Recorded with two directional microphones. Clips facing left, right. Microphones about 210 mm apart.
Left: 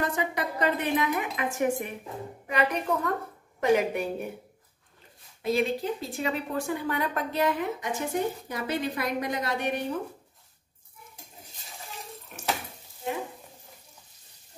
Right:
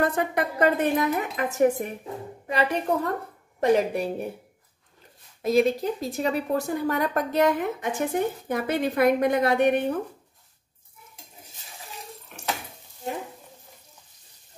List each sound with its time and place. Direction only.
0.0 s a woman's voice: 55° right (ahead or behind); by 4.1 s 35° right (ahead or behind)
5.4 s a woman's voice: 40° right (ahead or behind)